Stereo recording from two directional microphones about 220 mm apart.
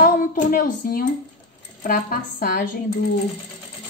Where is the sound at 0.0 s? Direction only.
40° left (ahead or behind).